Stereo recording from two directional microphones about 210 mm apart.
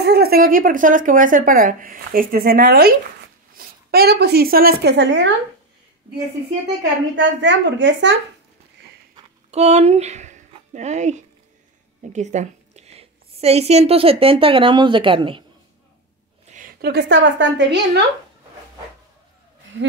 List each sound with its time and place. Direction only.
0.0 s a woman's voice: 50° right (ahead or behind)
6.8 s a woman's voice: 60° right (ahead or behind)
9.1 s a sound: 30° right (ahead or behind)
12.1 s a woman's voice: 35° right (ahead or behind)
16.4 s a woman's voice: 40° right (ahead or behind); by 18.0 s 55° right (ahead or behind)
19.7 s a woman's voice: 60° right (ahead or behind)